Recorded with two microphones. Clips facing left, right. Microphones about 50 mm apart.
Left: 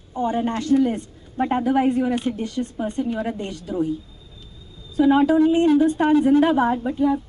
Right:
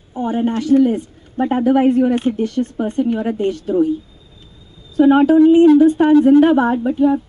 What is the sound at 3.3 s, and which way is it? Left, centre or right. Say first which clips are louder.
Speech: right 11 dB; right.